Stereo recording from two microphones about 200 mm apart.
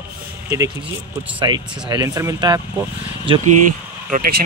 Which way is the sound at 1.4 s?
20° right (ahead or behind).